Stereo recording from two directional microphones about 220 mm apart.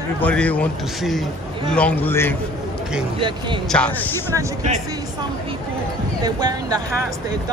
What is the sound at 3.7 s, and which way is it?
Speech, 5° left (ahead or behind).